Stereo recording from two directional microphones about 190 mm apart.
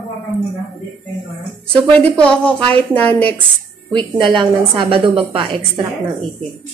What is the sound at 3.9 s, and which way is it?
A woman's voice, 25° right (ahead or behind).